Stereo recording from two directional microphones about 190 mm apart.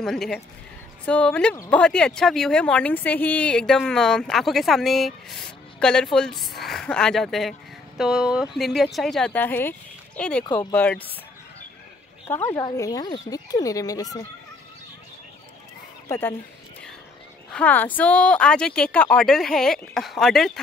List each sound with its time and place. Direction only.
0.0 s speech: centre (ahead or behind)
12.3 s speech: 15° left (ahead or behind)
16.1 s speech: 10° left (ahead or behind)
17.5 s speech: 5° left (ahead or behind)